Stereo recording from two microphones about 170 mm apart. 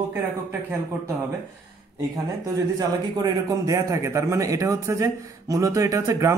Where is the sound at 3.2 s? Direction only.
20° right (ahead or behind).